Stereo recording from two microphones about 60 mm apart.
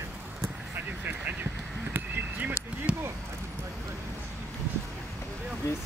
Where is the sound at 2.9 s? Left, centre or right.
Centre.